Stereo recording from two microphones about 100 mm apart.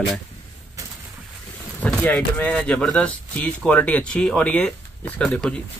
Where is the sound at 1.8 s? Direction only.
15° left (ahead or behind).